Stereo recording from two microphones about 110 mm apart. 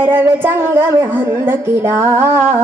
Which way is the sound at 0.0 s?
20° right (ahead or behind).